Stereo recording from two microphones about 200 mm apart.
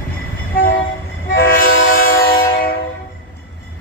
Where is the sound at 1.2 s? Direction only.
45° left (ahead or behind).